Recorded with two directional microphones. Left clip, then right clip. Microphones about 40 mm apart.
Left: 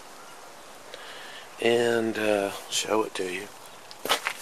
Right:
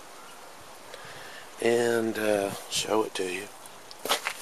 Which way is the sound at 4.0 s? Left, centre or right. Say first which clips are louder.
Left 2 dB; centre.